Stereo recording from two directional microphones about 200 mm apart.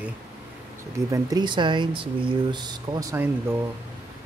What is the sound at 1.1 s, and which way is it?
Speech, 20° right (ahead or behind).